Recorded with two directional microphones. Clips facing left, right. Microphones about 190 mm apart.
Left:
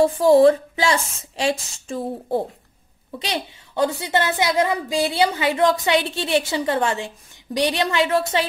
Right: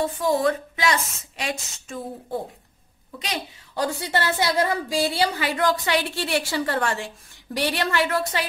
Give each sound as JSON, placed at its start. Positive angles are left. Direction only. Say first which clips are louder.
{"t": 0.0, "sound": "speech", "louder": "left 9 dB", "side_deg": 30}
{"t": 3.2, "sound": "a woman's voice", "louder": "left 4 dB", "side_deg": 25}